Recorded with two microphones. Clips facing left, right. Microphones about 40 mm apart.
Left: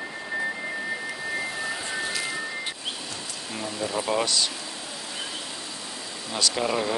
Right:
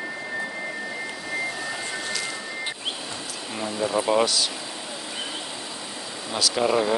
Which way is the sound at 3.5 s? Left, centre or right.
Centre.